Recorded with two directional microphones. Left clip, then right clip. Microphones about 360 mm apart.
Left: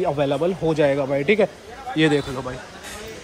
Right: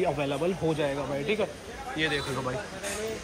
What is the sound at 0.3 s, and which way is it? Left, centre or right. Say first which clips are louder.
Speech: left 7 dB; centre.